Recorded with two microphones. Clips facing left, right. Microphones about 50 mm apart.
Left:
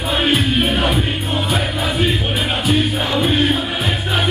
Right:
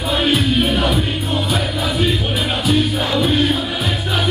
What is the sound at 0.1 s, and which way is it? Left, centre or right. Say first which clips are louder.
Music: even; centre.